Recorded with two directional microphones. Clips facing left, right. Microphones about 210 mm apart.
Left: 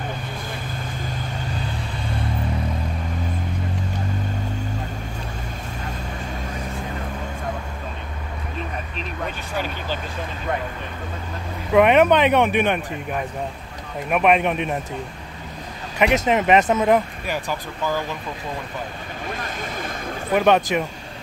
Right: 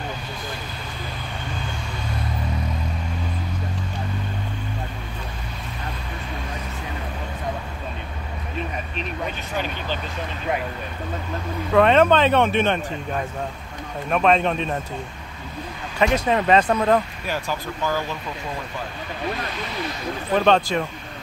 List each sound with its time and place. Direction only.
11.7 s speech: 15° left (ahead or behind)
16.0 s speech: 20° left (ahead or behind)
19.3 s speech: 50° left (ahead or behind)
20.2 s speech: 15° left (ahead or behind)